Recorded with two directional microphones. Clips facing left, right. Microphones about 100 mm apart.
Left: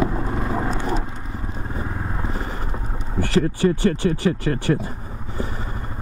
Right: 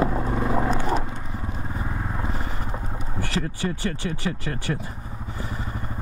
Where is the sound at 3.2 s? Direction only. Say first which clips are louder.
Left 9 dB; 45° left (ahead or behind).